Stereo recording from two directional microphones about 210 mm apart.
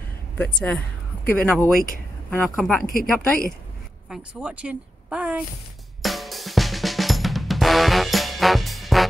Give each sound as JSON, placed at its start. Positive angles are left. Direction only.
{"t": 0.4, "sound": "speech", "side_deg": 5}
{"t": 2.8, "sound": "a woman's voice", "side_deg": 40}
{"t": 4.1, "sound": "speech", "side_deg": -5}
{"t": 6.0, "sound": "drum kit", "side_deg": 0}